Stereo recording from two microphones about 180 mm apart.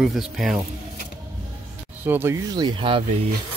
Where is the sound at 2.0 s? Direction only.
10° right (ahead or behind); by 3.0 s 30° right (ahead or behind).